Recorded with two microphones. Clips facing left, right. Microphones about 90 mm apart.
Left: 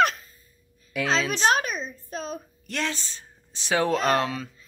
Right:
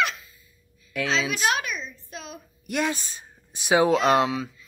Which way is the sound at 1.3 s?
35° left (ahead or behind).